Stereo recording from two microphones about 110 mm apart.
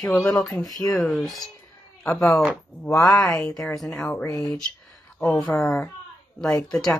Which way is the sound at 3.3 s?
5° left (ahead or behind).